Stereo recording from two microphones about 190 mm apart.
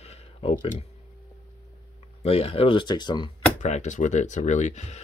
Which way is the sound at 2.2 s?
30° left (ahead or behind).